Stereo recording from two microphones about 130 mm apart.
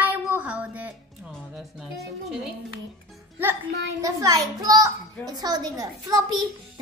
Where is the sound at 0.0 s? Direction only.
10° right (ahead or behind).